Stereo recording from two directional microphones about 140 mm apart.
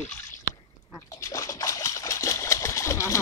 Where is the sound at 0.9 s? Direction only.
20° left (ahead or behind).